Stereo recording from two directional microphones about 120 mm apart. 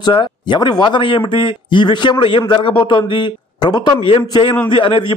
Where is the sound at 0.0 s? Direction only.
40° left (ahead or behind).